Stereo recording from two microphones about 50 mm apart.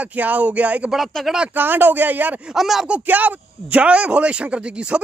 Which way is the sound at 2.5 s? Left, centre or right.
Centre.